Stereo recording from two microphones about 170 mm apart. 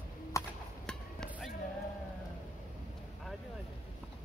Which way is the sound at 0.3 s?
20° left (ahead or behind).